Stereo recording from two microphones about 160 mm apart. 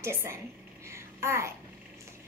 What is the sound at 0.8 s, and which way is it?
Babbling, 15° right (ahead or behind).